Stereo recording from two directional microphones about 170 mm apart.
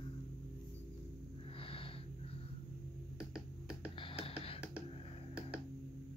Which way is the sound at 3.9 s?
30° left (ahead or behind).